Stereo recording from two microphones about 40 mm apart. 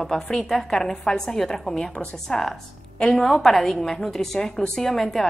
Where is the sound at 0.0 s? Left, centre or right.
Centre.